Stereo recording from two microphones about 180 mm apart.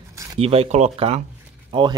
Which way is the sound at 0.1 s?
15° right (ahead or behind).